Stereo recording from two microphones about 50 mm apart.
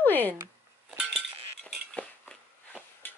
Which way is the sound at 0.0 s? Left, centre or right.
Left.